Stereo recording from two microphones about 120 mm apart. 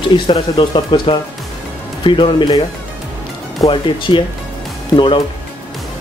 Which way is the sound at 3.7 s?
45° left (ahead or behind).